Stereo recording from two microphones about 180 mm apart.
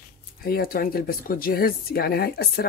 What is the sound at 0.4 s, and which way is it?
Speech, 55° left (ahead or behind).